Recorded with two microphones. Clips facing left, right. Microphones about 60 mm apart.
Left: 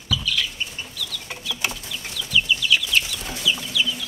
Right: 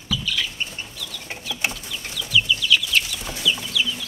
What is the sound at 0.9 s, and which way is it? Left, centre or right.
Chicken, right.